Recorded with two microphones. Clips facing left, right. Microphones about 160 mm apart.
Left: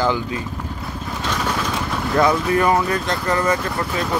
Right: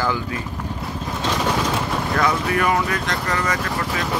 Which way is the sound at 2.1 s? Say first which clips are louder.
Left 5 dB; 25° left (ahead or behind).